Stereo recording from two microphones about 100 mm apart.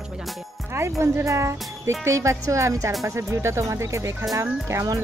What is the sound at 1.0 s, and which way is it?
Speech, 30° right (ahead or behind).